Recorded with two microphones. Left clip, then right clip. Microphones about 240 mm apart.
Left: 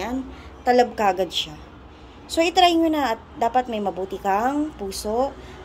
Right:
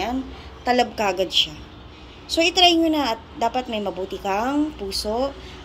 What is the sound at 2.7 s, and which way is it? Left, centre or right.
A woman's voice, centre.